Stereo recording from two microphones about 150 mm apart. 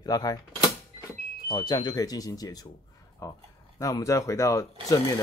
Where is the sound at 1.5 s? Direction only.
30° left (ahead or behind).